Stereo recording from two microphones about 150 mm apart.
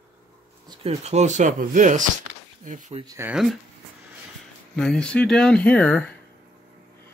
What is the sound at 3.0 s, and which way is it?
Speech, 15° right (ahead or behind).